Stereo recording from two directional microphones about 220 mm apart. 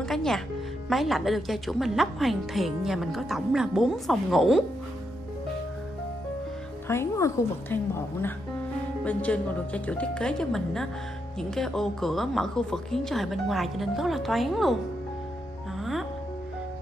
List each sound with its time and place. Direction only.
0.0 s music: centre (ahead or behind)
0.8 s a woman's voice: centre (ahead or behind)
6.9 s a woman's voice: 10° left (ahead or behind)
15.8 s music: centre (ahead or behind)